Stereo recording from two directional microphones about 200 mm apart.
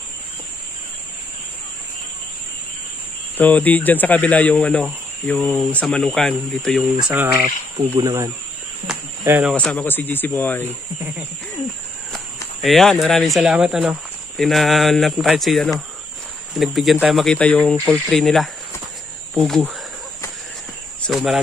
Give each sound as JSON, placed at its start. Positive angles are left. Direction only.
{"t": 3.3, "sound": "speech", "side_deg": 10}
{"t": 7.9, "sound": "speech", "side_deg": -15}
{"t": 8.9, "sound": "cricket", "side_deg": -5}
{"t": 9.2, "sound": "speech", "side_deg": -15}
{"t": 9.5, "sound": "speech", "side_deg": 5}
{"t": 12.6, "sound": "speech", "side_deg": 0}
{"t": 21.1, "sound": "speech", "side_deg": 0}